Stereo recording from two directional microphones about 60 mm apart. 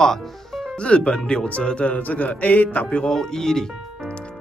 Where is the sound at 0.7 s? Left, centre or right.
Centre.